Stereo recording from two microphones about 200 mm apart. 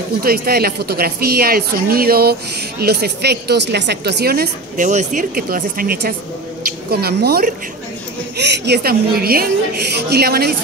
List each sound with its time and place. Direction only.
0.2 s a woman's voice: 50° right (ahead or behind)